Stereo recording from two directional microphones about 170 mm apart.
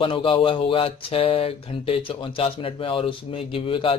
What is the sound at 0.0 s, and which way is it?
Speech, 30° left (ahead or behind).